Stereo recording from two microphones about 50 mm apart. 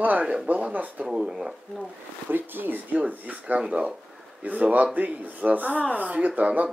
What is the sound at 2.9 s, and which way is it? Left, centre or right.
Speech, right.